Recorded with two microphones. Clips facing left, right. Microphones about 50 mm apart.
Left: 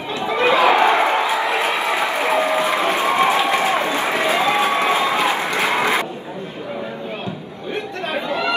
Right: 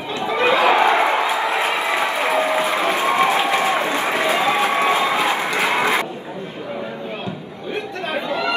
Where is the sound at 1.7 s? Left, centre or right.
Left.